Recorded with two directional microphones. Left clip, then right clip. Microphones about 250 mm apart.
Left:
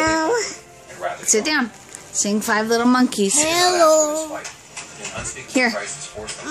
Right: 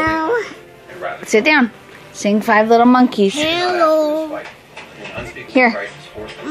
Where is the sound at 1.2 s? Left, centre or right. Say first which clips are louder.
Right 7 dB; centre.